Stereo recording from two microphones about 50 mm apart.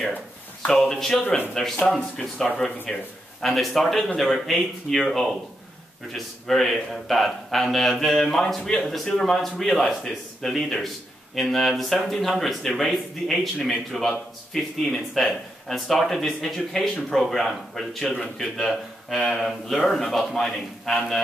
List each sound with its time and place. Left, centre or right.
0.7 s speech: centre
1.2 s speech: left
1.5 s speech: centre
3.3 s a man's voice: centre